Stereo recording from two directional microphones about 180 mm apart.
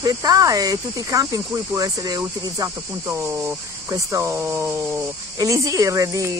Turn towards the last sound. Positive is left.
turn(degrees=-15)  # may be behind; listen again after turning